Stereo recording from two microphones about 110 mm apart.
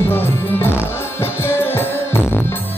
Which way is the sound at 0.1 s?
20° left (ahead or behind).